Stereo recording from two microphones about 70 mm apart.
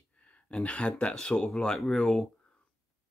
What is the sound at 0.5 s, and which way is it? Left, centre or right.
Speech, centre.